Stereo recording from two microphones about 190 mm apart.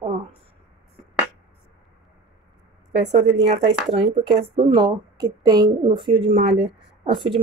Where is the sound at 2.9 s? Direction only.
65° right (ahead or behind).